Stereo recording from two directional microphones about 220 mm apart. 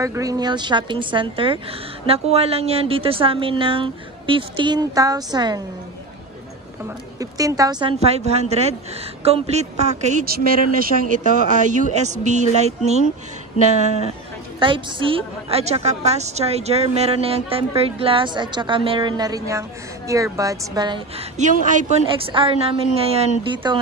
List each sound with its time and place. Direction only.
0.0 s a woman's voice: 15° right (ahead or behind)
7.2 s a woman's voice: 15° right (ahead or behind)
14.6 s a woman's voice: 20° right (ahead or behind)
21.4 s speech: 35° right (ahead or behind)
22.3 s a woman's voice: 25° right (ahead or behind)